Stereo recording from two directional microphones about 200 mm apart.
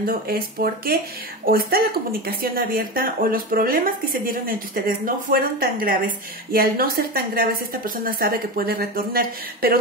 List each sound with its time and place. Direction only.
0.0 s speech: 45° right (ahead or behind)